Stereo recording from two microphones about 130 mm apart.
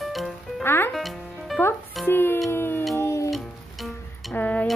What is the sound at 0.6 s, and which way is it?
Music, 15° left (ahead or behind).